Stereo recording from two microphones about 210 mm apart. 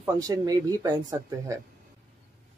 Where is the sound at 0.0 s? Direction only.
15° right (ahead or behind).